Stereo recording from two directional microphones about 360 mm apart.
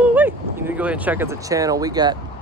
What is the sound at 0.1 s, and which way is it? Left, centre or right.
Speech, centre.